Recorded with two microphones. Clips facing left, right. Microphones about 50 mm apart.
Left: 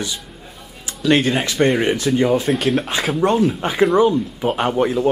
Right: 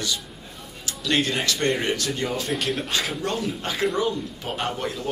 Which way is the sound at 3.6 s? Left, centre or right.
Left.